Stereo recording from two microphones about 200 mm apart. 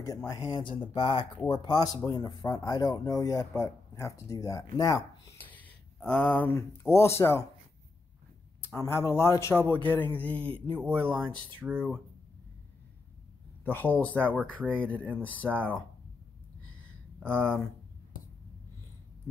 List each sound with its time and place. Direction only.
0.0 s speech: 15° left (ahead or behind)
8.6 s speech: 15° left (ahead or behind)
11.1 s speech: 25° right (ahead or behind)
13.7 s speech: 10° left (ahead or behind)
17.3 s speech: 5° left (ahead or behind)